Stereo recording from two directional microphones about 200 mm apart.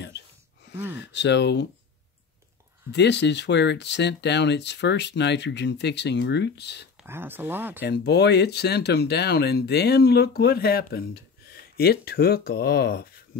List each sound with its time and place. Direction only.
0.9 s speech: 60° left (ahead or behind)
2.9 s speech: 60° left (ahead or behind)
7.0 s speech: 10° right (ahead or behind)
7.8 s speech: 55° left (ahead or behind)